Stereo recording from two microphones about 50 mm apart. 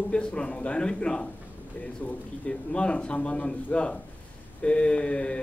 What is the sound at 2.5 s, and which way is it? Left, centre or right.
Speech, centre.